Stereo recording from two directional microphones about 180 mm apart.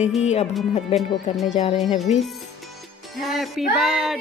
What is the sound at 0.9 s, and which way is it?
Female singing, centre (ahead or behind).